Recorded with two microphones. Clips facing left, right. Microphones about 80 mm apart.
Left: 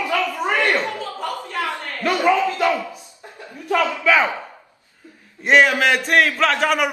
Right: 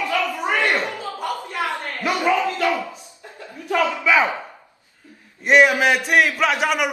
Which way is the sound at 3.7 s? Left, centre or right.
Centre.